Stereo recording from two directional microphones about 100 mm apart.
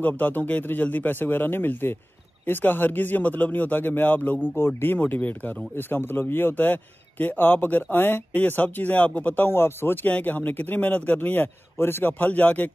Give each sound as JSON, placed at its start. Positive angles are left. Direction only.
{"t": 0.0, "sound": "a man's voice", "side_deg": 15}